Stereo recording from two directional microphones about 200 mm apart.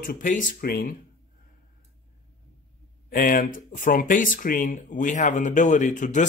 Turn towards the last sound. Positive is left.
turn(degrees=40)  # may be behind; listen again after turning